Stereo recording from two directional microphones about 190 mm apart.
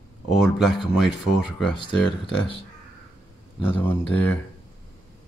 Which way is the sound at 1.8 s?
25° left (ahead or behind).